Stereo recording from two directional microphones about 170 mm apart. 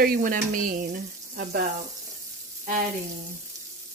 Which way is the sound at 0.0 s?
55° right (ahead or behind).